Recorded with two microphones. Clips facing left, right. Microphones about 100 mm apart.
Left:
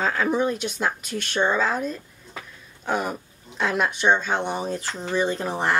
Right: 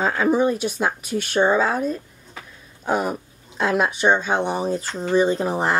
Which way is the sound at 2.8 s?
5° right (ahead or behind).